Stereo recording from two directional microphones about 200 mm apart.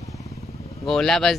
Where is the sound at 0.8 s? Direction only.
Centre (ahead or behind).